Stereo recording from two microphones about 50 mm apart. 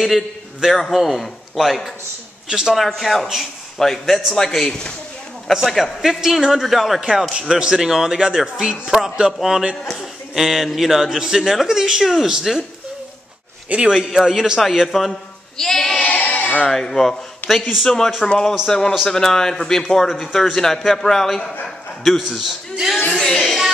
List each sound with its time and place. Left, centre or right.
0.7 s speech: centre
2.4 s speech: centre
2.9 s speech: centre
5.5 s speech: centre
7.0 s speech: centre
13.7 s speech: right
14.1 s speech: centre
15.5 s sheep: centre
16.0 s a sound: left
16.6 s speech: centre
17.5 s speech: centre
17.8 s speech: centre
23.1 s a sound: centre